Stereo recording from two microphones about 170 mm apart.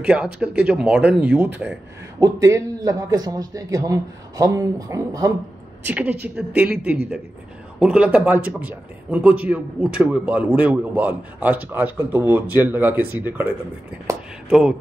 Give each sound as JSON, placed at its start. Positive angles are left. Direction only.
{"t": 0.0, "sound": "a man's voice", "side_deg": -5}
{"t": 5.9, "sound": "a man's voice", "side_deg": -10}